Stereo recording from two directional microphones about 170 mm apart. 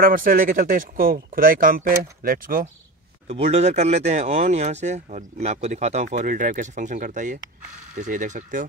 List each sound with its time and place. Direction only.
0.0 s speech: 55° right (ahead or behind)
3.3 s speech: 40° right (ahead or behind)